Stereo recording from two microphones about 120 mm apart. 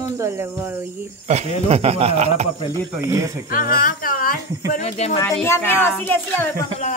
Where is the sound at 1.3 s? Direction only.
70° right (ahead or behind).